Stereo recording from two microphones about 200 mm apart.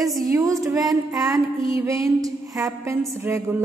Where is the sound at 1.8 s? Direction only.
15° right (ahead or behind).